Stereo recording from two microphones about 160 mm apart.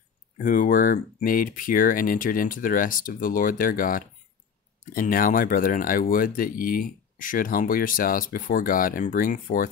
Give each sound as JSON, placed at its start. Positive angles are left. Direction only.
{"t": 0.4, "sound": "speech", "side_deg": 55}